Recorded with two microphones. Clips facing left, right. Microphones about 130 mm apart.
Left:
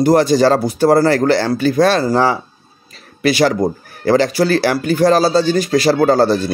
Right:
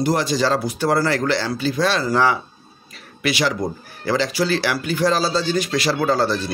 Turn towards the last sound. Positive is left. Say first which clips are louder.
# left 7 dB
turn(degrees=40)  # may be behind; listen again after turning